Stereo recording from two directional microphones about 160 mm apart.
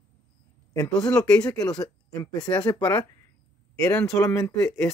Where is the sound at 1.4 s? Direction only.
25° left (ahead or behind).